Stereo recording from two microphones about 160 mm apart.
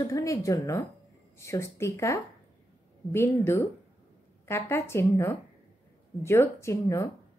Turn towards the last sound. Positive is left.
turn(degrees=20)  # may be behind; listen again after turning